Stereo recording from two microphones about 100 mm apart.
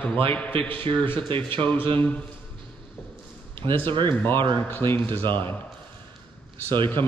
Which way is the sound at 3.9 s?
55° right (ahead or behind).